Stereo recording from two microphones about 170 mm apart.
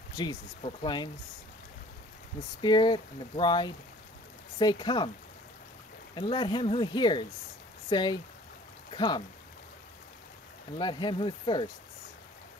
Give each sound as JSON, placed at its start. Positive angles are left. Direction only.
{"t": 0.1, "sound": "speech", "side_deg": 20}
{"t": 2.6, "sound": "speech", "side_deg": 25}
{"t": 6.1, "sound": "speech", "side_deg": 25}
{"t": 10.8, "sound": "speech", "side_deg": 25}